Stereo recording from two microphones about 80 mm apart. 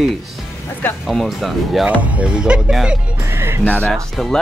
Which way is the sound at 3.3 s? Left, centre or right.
Right.